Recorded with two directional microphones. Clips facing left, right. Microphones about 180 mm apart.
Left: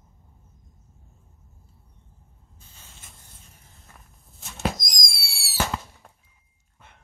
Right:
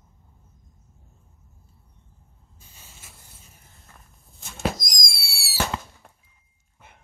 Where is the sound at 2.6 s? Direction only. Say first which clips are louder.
Right 1 dB; 10° right (ahead or behind).